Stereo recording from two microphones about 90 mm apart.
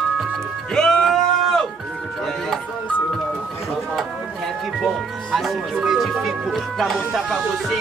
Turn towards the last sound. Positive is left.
turn(degrees=0)  # may be behind; listen again after turning